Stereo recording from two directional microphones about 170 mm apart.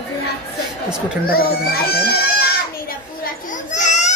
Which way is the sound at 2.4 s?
60° left (ahead or behind).